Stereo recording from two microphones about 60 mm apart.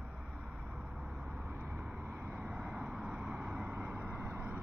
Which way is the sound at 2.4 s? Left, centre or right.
Centre.